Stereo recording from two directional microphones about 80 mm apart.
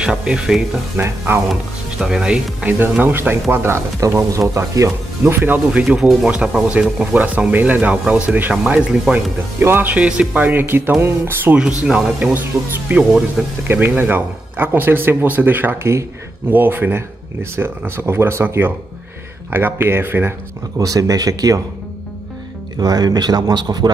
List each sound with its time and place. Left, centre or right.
0.0 s speech: centre
0.9 s speech: right
1.5 s speech: centre
3.0 s speech: right
4.0 s speech: right
5.3 s speech: right
5.7 s speech: centre
7.2 s speech: centre
11.5 s speech: centre
12.3 s speech: right
16.4 s speech: right
20.8 s speech: right
22.8 s speech: right